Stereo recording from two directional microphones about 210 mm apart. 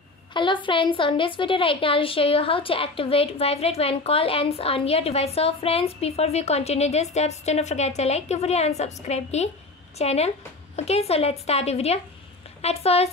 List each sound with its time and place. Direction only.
0.3 s a woman's voice: 20° left (ahead or behind)